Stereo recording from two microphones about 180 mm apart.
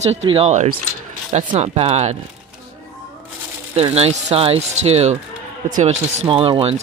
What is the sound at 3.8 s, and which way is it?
Speech, 35° right (ahead or behind).